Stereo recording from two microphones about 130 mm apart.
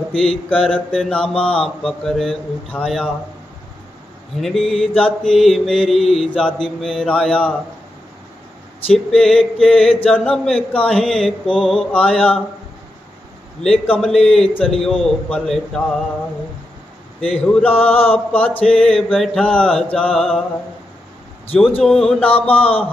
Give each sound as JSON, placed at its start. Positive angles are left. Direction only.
{"t": 0.1, "sound": "mantra", "side_deg": 5}
{"t": 4.4, "sound": "mantra", "side_deg": 0}
{"t": 8.9, "sound": "mantra", "side_deg": 5}
{"t": 13.6, "sound": "mantra", "side_deg": 5}
{"t": 17.2, "sound": "mantra", "side_deg": 10}
{"t": 17.9, "sound": "a man's voice", "side_deg": 50}
{"t": 18.3, "sound": "mantra", "side_deg": 10}
{"t": 21.8, "sound": "mantra", "side_deg": 5}
{"t": 22.5, "sound": "a man's voice", "side_deg": 45}